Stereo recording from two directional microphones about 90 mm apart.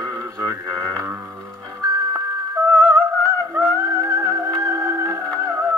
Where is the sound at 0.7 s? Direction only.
30° right (ahead or behind).